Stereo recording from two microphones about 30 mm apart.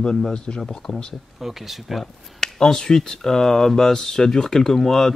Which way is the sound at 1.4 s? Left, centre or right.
Centre.